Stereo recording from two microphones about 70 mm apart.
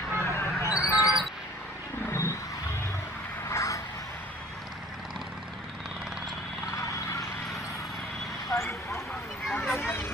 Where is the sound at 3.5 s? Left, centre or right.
Left.